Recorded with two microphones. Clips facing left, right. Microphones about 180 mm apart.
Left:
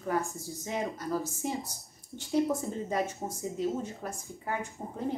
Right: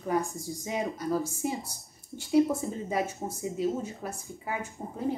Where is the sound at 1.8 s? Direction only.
Centre (ahead or behind).